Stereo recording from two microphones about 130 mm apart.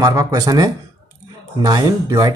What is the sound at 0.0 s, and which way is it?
Speech, 30° right (ahead or behind).